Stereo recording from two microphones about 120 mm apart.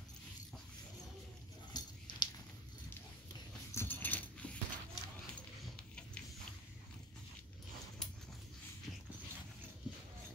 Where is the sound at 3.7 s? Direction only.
15° left (ahead or behind).